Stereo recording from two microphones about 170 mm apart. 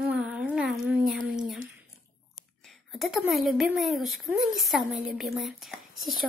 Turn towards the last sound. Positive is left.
turn(degrees=0)  # may be behind; listen again after turning